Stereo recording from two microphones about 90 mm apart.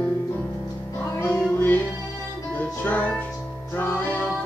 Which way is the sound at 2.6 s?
20° left (ahead or behind).